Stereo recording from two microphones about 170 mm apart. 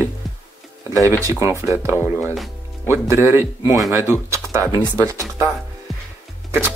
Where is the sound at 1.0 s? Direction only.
20° right (ahead or behind).